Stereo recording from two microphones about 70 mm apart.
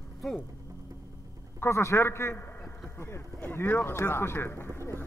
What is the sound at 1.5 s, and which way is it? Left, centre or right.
Speech, left.